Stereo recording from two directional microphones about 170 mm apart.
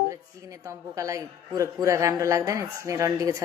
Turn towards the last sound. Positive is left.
turn(degrees=-20)  # may be behind; listen again after turning